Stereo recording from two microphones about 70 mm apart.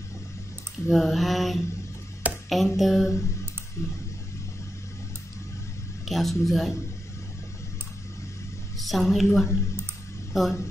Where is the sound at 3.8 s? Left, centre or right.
Left.